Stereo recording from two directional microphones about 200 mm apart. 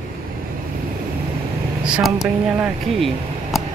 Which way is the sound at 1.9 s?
5° right (ahead or behind).